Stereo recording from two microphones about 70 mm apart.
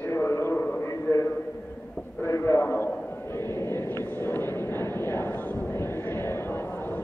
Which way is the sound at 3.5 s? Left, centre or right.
Left.